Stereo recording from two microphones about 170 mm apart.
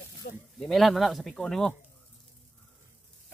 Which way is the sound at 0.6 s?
Centre (ahead or behind).